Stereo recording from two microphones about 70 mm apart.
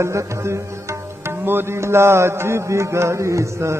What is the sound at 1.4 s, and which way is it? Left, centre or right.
Music, right.